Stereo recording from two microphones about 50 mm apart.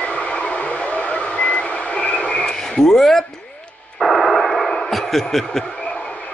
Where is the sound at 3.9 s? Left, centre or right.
Centre.